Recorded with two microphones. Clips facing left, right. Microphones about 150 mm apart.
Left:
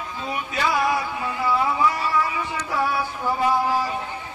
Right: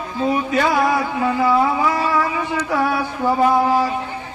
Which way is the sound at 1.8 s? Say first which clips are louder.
Right 3 dB; 65° right (ahead or behind).